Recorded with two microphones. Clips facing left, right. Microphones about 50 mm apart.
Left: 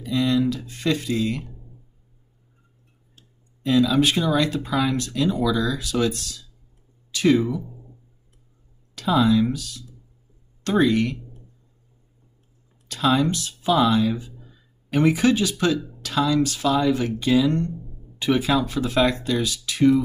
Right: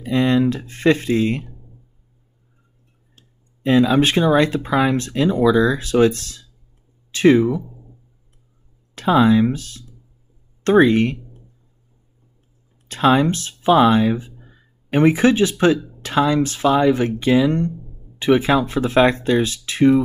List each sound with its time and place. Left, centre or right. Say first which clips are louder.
0.0 s speech: right 4 dB; right
3.2 s speech: right 1 dB; right
8.9 s speech: right 4 dB; right
12.8 s speech: right 5 dB; right